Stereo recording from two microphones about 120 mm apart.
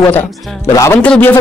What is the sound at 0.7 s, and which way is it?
Speech, 25° left (ahead or behind).